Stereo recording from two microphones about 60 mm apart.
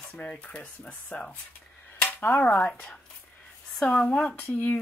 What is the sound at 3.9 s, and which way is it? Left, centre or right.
Speech, centre.